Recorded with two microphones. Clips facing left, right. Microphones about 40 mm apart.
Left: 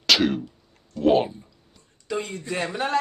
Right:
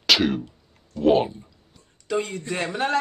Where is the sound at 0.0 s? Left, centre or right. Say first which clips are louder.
Even; centre.